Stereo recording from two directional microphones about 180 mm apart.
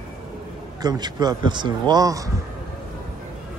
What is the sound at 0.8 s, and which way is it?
A man's voice, 20° right (ahead or behind).